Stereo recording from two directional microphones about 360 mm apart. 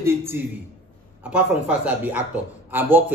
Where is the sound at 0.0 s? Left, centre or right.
Centre.